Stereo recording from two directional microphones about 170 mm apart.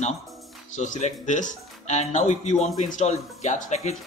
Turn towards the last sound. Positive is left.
turn(degrees=45)  # may be behind; listen again after turning